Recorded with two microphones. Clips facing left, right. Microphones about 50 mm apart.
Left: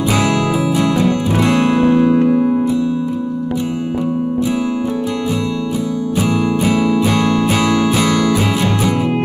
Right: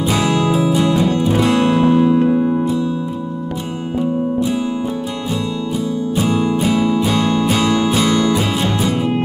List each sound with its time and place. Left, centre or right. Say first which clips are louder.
0.1 s music: even; left
6.2 s music: left 1 dB; left
7.4 s music: left 1 dB; left